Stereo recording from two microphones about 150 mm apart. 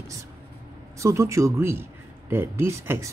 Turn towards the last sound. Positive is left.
turn(degrees=-15)  # may be behind; listen again after turning